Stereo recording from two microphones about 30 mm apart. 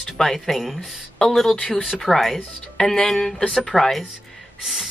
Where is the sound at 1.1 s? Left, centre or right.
Centre.